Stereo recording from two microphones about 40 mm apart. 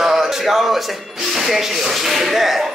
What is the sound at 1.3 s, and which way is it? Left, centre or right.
A man's voice, centre.